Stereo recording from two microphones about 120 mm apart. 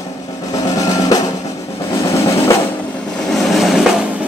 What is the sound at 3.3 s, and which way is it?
Drum, centre (ahead or behind).